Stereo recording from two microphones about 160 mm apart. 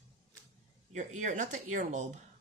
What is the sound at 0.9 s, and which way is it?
Speech, 50° right (ahead or behind).